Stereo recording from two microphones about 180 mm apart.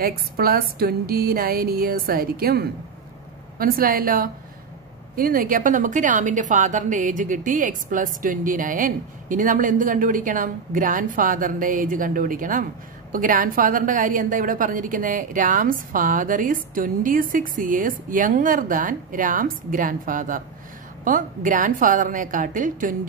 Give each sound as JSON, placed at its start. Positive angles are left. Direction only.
{"t": 0.0, "sound": "a woman's voice", "side_deg": -55}